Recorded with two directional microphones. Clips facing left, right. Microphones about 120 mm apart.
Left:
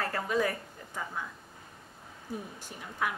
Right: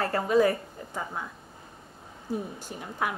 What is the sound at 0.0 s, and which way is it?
A woman's voice, 30° right (ahead or behind).